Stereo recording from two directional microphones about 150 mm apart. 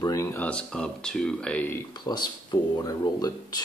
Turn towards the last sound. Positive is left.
turn(degrees=25)  # may be behind; listen again after turning